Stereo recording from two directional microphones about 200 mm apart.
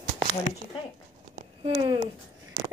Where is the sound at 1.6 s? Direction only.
25° right (ahead or behind).